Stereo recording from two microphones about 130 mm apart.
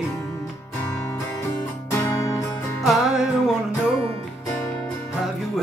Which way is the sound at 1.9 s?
25° left (ahead or behind).